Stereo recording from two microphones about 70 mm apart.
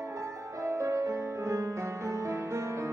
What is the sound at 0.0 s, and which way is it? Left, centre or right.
Music, right.